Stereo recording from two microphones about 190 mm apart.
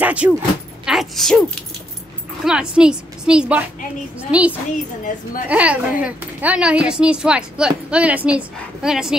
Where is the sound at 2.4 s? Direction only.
5° right (ahead or behind).